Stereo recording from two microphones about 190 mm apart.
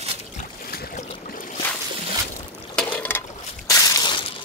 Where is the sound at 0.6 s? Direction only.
50° left (ahead or behind).